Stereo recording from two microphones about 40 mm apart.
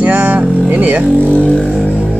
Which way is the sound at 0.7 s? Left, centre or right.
Right.